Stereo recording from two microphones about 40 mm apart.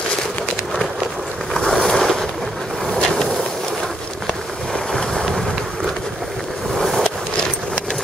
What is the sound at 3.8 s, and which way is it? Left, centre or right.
Boat, centre.